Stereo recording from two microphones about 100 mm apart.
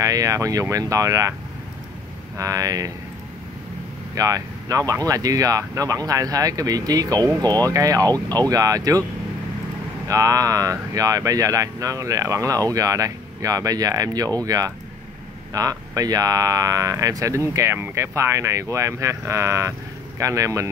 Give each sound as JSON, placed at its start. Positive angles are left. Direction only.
{"t": 0.0, "sound": "speech", "side_deg": -35}
{"t": 2.3, "sound": "speech", "side_deg": -35}
{"t": 4.1, "sound": "speech", "side_deg": -35}
{"t": 10.0, "sound": "speech", "side_deg": -35}